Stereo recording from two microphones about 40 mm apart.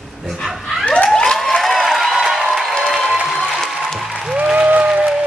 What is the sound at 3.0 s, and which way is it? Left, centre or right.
Music, centre.